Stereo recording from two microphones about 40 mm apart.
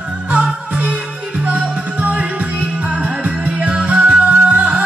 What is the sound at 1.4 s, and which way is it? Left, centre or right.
Music, right.